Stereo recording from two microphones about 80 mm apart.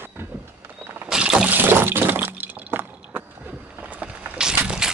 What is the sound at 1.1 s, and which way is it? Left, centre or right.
Boat, centre.